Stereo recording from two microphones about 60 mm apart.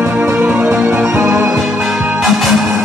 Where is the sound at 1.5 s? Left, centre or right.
Centre.